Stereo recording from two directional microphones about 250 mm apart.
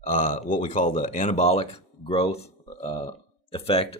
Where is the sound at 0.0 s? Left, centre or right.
Left.